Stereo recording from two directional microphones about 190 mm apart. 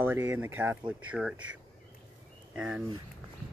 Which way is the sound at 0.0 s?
10° right (ahead or behind).